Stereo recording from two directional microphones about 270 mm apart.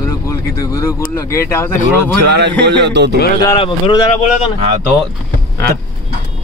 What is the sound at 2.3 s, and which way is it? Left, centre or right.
Speech, right.